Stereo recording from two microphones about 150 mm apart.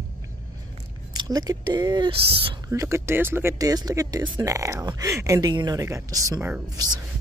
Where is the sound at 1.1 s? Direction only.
25° right (ahead or behind).